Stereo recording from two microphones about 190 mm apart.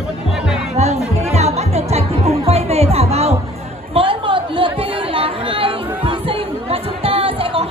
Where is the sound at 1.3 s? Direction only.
35° right (ahead or behind).